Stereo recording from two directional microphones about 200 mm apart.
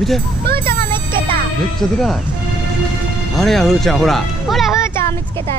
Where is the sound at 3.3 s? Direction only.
Centre (ahead or behind).